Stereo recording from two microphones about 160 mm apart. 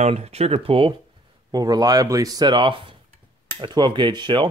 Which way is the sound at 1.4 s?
25° right (ahead or behind).